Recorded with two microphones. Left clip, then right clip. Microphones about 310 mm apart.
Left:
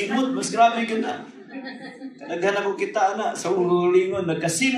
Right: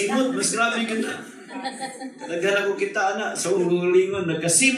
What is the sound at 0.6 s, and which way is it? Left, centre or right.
Speech, left.